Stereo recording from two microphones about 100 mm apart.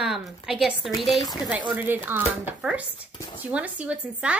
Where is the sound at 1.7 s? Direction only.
15° right (ahead or behind).